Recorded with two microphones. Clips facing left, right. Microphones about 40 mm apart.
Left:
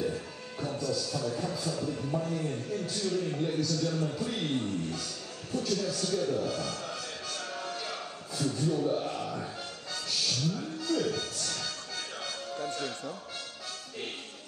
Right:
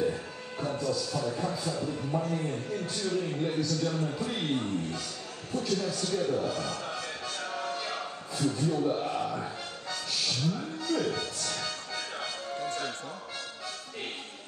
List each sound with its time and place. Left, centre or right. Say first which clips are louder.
0.0 s music: right 3 dB; right
2.1 s a man's voice: right 3 dB; right
7.7 s a sound: right 3 dB; right
9.0 s a man's voice: right 3 dB; right
10.2 s music: right 1 dB; right